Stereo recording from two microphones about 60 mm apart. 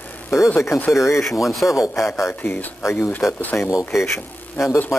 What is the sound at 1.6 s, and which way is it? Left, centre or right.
Speech, left.